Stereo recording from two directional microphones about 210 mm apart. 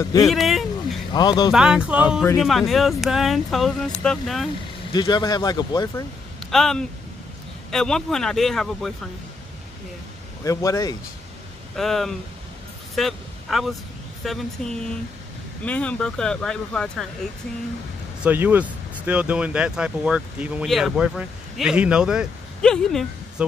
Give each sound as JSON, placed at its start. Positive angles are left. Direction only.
{"t": 0.0, "sound": "speech", "side_deg": 15}
{"t": 0.3, "sound": "a sound", "side_deg": 0}
{"t": 1.1, "sound": "speech", "side_deg": 20}
{"t": 1.5, "sound": "speech", "side_deg": -5}
{"t": 4.9, "sound": "speech", "side_deg": 20}
{"t": 6.5, "sound": "speech", "side_deg": 0}
{"t": 10.4, "sound": "speech", "side_deg": 15}
{"t": 11.7, "sound": "speech", "side_deg": 0}
{"t": 18.2, "sound": "speech", "side_deg": -10}